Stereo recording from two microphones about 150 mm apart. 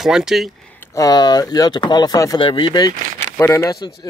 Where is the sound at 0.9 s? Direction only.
25° left (ahead or behind).